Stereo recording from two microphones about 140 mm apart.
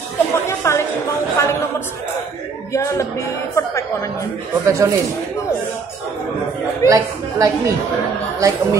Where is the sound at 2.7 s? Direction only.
20° left (ahead or behind).